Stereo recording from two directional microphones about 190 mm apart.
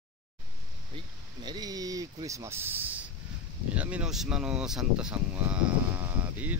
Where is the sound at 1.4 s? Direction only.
20° right (ahead or behind).